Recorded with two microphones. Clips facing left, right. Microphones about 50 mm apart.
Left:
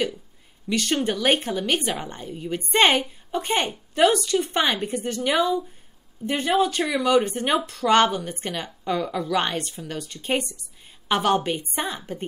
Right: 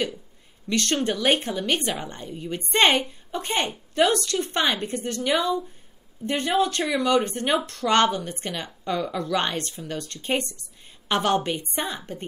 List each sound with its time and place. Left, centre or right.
0.7 s a woman's voice: centre